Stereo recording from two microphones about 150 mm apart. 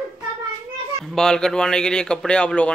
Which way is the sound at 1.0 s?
Centre (ahead or behind).